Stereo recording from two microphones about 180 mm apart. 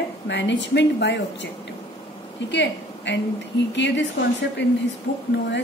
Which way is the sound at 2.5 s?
75° left (ahead or behind).